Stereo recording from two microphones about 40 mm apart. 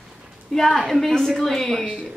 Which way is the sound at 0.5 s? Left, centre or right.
Centre.